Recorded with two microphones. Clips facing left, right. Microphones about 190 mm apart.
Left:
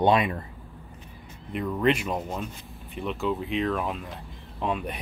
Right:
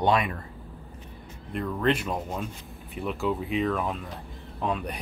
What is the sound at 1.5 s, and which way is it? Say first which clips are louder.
Speech: left 2 dB; 5° left (ahead or behind).